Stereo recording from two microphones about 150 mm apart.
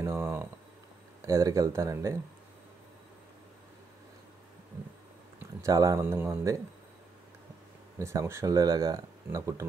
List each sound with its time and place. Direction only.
0.0 s a sound: 15° right (ahead or behind)
1.2 s speech: 20° right (ahead or behind)
5.6 s speech: 20° right (ahead or behind)
8.0 s speech: 20° right (ahead or behind)